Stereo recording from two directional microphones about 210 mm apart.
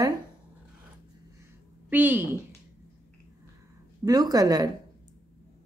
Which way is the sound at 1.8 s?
10° right (ahead or behind).